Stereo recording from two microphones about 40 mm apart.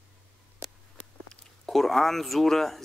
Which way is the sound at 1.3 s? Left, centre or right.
Centre.